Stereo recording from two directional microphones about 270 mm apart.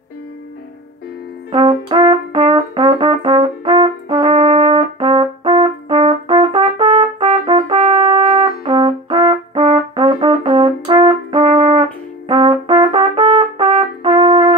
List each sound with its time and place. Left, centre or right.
1.5 s brass instrument: centre
12.3 s trumpet: centre